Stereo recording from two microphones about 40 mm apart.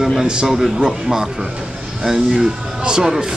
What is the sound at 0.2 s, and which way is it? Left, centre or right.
A man's voice, centre.